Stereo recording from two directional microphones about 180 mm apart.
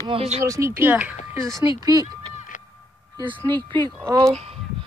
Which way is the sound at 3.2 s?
25° right (ahead or behind).